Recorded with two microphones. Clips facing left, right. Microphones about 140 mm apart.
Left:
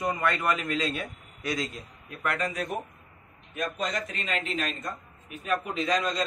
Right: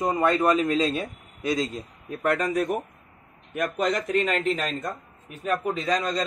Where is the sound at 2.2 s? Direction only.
45° right (ahead or behind).